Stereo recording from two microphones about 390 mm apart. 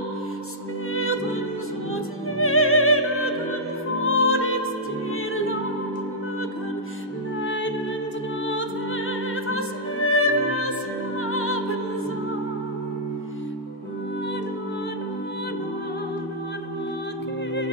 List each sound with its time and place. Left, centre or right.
0.9 s music: left
2.3 s music: left
7.4 s music: left